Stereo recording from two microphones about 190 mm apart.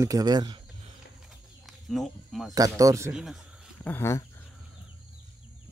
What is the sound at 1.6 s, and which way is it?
Speech, centre (ahead or behind).